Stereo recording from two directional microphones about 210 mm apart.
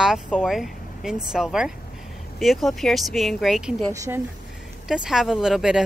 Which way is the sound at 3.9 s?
15° right (ahead or behind).